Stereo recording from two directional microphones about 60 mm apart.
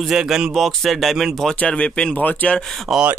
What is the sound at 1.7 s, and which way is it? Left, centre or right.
Speech, centre.